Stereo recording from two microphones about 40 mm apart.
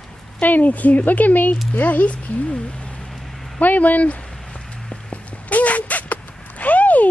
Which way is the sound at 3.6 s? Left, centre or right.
Left.